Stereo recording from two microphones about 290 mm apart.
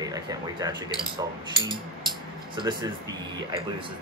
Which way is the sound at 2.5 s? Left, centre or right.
Centre.